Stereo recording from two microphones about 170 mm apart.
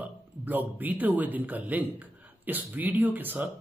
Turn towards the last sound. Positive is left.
turn(degrees=-10)  # may be behind; listen again after turning